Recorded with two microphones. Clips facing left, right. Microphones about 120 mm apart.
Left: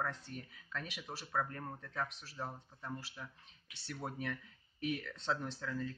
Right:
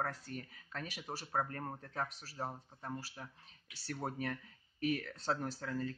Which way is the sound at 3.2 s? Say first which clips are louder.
Even; 45° right (ahead or behind).